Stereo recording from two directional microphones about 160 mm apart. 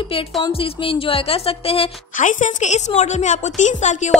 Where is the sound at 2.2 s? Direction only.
50° left (ahead or behind).